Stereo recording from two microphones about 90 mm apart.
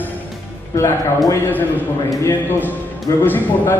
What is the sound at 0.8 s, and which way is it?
Speech, 30° left (ahead or behind).